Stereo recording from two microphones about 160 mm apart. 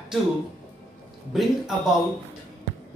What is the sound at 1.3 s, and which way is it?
Speech, centre (ahead or behind).